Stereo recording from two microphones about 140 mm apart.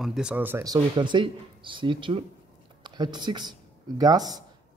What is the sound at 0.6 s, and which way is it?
Speech, 35° right (ahead or behind).